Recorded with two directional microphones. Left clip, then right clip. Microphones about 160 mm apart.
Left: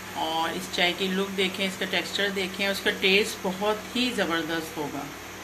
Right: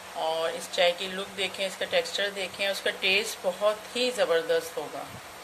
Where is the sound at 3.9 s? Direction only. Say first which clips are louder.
Right 1 dB; 80° right.